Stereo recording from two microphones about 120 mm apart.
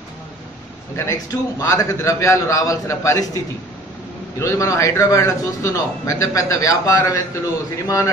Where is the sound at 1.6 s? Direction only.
25° left (ahead or behind).